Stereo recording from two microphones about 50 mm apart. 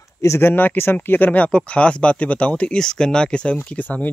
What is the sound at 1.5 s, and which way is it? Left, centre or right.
Speech, left.